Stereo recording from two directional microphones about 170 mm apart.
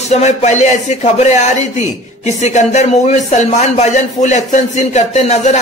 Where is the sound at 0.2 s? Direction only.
40° left (ahead or behind).